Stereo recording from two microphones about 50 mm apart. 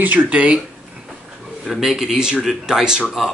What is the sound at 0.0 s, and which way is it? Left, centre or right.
Speech, right.